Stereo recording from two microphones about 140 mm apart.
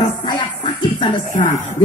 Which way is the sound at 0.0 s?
30° left (ahead or behind).